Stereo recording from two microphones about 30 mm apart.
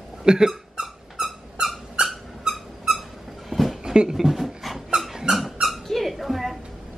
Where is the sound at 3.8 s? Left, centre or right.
Right.